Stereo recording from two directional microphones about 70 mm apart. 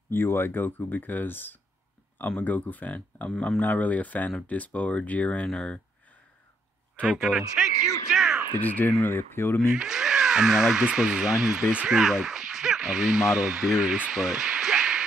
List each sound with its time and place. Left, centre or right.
0.1 s speech: left; by 5.8 s centre
7.0 s a man's voice: centre
8.1 s a sound: centre
8.5 s speech: left
9.7 s speech: centre